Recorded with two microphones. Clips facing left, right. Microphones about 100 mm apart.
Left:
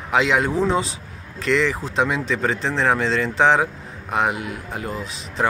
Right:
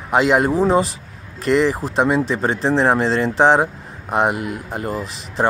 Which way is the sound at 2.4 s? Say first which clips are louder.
Right 4 dB; 30° right (ahead or behind).